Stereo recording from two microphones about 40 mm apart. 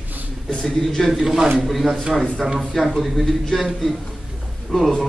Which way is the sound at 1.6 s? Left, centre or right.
Centre.